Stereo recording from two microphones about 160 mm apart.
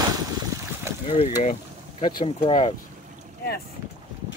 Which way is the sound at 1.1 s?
35° left (ahead or behind).